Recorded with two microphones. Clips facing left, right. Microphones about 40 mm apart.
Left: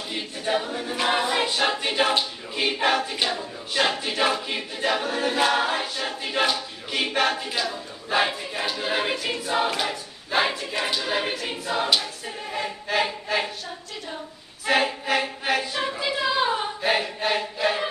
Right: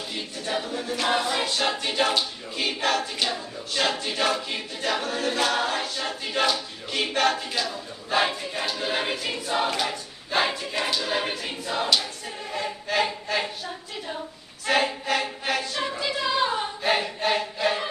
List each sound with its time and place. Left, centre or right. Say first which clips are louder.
0.1 s choir: left 5 dB; centre
14.7 s choir: left 1 dB; centre